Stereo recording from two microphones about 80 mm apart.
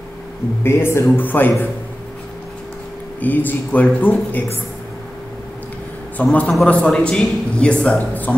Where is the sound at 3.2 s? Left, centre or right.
Left.